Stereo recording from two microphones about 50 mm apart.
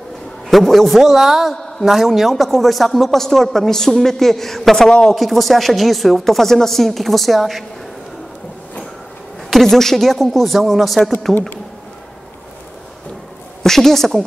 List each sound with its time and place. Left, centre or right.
0.5 s a man's voice: centre
9.5 s a man's voice: centre
13.6 s a woman's voice: centre